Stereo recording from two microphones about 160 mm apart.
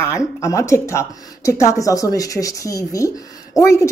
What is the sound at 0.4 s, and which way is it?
A woman's voice, 20° left (ahead or behind).